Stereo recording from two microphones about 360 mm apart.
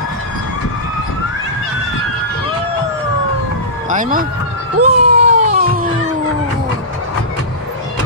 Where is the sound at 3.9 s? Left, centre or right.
Right.